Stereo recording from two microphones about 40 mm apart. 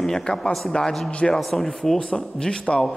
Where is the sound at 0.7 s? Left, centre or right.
Left.